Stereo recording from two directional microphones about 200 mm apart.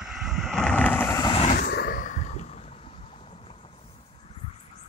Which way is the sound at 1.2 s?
25° left (ahead or behind).